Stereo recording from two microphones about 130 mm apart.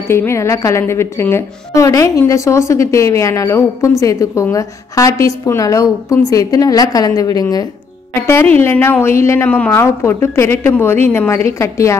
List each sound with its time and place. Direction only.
0.1 s a woman's voice: 20° left (ahead or behind)
8.3 s a woman's voice: 20° left (ahead or behind)